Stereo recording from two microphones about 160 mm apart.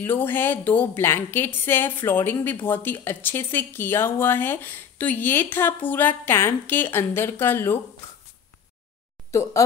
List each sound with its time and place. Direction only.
0.0 s a woman's voice: 15° left (ahead or behind)
9.3 s speech: 20° left (ahead or behind)